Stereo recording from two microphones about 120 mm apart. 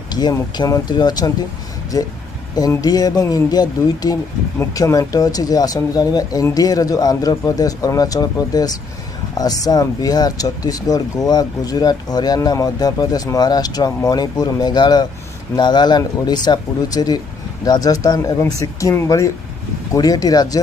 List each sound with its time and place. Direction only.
0.1 s speech: 35° left (ahead or behind)
2.8 s speech: 35° left (ahead or behind)